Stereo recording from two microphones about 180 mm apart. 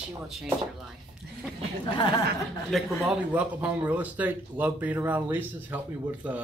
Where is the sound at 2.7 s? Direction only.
5° right (ahead or behind).